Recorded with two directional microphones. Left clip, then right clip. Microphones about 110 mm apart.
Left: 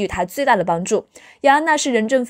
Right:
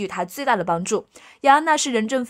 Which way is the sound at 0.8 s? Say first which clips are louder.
Left 4 dB; 20° left (ahead or behind).